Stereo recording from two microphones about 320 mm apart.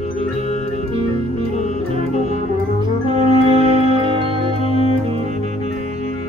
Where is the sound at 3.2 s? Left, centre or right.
Centre.